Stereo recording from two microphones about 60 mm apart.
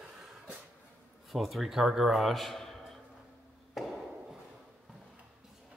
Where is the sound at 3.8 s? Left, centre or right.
Centre.